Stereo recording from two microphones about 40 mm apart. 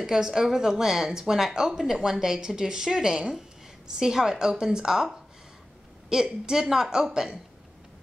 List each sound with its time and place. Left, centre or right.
0.0 s speech: centre